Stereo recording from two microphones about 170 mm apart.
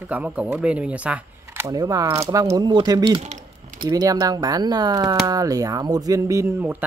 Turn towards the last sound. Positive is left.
turn(degrees=-20)  # may be behind; listen again after turning